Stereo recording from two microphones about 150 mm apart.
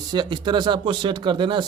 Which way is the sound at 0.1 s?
30° right (ahead or behind).